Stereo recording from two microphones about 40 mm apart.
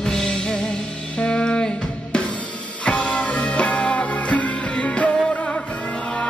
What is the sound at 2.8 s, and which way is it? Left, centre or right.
Music, left.